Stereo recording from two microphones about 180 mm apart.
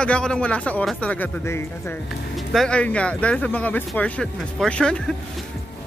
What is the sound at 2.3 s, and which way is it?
Speech, centre (ahead or behind).